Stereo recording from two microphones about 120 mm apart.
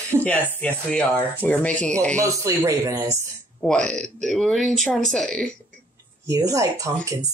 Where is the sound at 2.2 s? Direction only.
25° right (ahead or behind).